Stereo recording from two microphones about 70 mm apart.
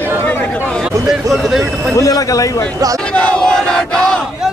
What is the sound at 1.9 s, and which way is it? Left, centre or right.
Speech, left.